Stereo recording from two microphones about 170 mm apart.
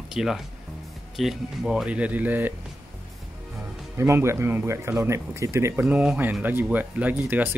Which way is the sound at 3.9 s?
15° right (ahead or behind).